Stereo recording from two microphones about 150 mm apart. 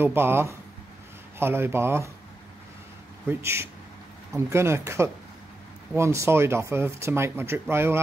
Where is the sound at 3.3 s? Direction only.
15° right (ahead or behind).